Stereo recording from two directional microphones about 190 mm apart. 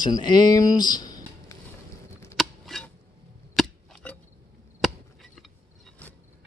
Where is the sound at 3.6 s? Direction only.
Centre (ahead or behind).